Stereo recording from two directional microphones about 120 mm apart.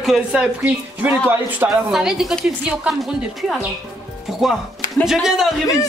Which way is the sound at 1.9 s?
5° right (ahead or behind).